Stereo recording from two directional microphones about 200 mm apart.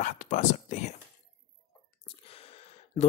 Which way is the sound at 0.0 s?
40° left (ahead or behind).